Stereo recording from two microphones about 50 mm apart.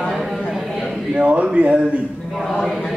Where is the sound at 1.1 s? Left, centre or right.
Right.